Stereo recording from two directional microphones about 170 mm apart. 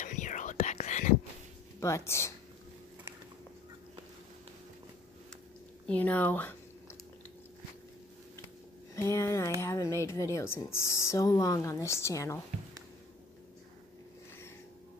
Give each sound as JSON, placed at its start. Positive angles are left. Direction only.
{"t": 0.0, "sound": "whispering", "side_deg": 45}
{"t": 1.8, "sound": "speech", "side_deg": 15}
{"t": 5.9, "sound": "speech", "side_deg": 10}
{"t": 8.9, "sound": "speech", "side_deg": 15}